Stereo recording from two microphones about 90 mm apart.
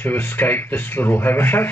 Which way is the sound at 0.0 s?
20° left (ahead or behind).